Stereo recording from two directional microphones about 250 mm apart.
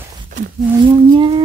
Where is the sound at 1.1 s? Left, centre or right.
Right.